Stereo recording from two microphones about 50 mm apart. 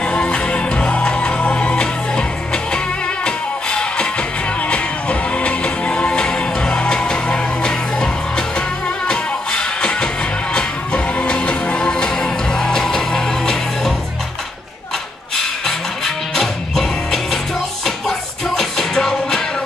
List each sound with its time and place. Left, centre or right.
0.0 s music: centre
15.3 s music: centre
18.6 s music: centre